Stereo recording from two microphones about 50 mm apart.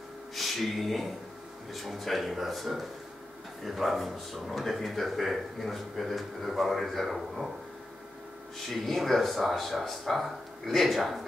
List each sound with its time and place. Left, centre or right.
0.4 s speech: centre
8.6 s speech: centre